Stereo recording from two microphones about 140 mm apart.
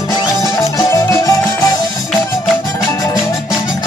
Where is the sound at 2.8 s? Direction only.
20° left (ahead or behind).